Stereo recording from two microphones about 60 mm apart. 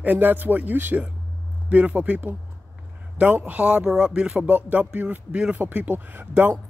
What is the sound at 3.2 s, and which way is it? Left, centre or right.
Speech, right.